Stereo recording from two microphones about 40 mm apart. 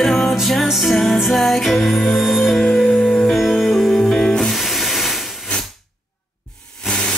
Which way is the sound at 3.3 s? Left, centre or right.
Centre.